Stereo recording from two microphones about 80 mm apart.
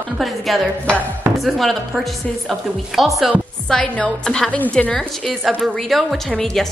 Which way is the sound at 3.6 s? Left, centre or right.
Centre.